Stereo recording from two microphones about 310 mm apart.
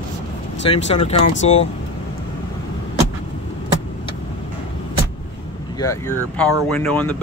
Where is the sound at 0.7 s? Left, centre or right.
Centre.